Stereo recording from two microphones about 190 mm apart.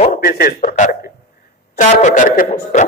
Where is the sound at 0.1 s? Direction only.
50° left (ahead or behind).